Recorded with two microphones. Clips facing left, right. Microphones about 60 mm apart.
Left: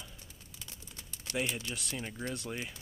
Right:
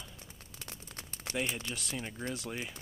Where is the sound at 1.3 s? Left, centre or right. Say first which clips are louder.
Left 1 dB; right.